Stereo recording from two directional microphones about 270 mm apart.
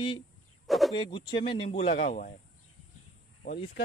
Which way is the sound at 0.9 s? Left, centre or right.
Centre.